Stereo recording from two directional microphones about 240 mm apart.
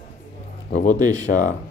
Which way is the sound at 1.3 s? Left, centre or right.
Left.